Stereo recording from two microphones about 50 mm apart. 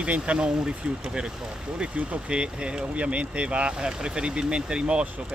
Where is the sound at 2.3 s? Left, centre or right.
Centre.